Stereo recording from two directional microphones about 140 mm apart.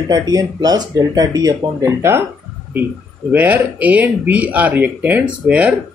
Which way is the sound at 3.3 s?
15° right (ahead or behind).